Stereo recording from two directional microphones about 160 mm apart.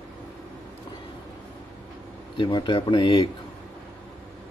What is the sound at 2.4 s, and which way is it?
Speech, 30° left (ahead or behind).